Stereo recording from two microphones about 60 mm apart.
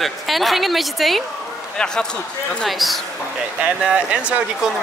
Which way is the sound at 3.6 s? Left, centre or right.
Centre.